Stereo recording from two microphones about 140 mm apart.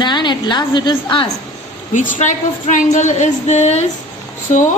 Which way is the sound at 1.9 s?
65° left (ahead or behind).